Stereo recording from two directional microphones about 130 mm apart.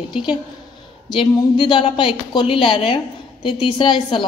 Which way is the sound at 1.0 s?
35° left (ahead or behind).